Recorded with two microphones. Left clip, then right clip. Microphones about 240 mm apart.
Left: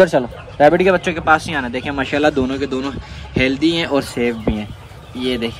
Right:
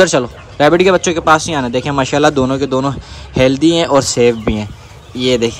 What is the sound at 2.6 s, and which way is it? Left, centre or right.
Speech, centre.